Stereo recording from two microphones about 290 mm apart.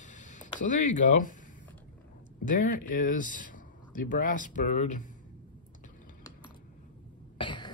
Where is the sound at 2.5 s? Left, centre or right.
Left.